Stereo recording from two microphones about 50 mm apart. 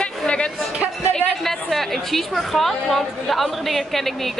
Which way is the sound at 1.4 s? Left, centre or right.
Centre.